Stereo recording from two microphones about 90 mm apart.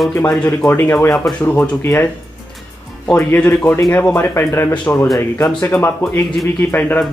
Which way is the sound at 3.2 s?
15° left (ahead or behind).